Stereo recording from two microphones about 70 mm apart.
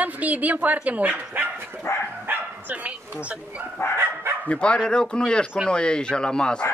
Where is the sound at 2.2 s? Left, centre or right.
Right.